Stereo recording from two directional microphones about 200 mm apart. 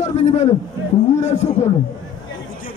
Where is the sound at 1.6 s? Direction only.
35° left (ahead or behind).